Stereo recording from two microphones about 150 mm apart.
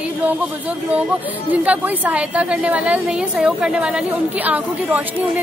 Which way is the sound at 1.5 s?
10° right (ahead or behind).